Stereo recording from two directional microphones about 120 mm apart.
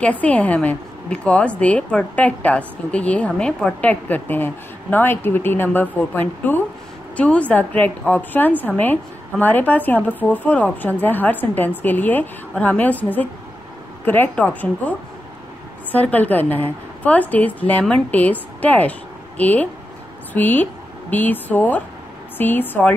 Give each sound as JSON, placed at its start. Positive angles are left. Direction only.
{"t": 0.0, "sound": "a woman's voice", "side_deg": 10}